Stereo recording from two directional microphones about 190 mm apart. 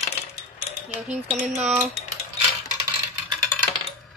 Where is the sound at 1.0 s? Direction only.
5° right (ahead or behind).